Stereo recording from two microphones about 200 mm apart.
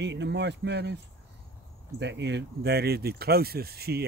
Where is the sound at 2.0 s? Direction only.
60° right (ahead or behind).